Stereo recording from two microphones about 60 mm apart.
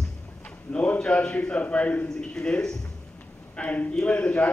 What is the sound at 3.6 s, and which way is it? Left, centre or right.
Speech, left.